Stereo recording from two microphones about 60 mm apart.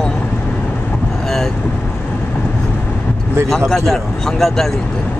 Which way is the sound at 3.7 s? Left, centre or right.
Centre.